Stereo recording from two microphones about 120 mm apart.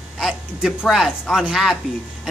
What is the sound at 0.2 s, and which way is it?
A woman's voice, centre (ahead or behind).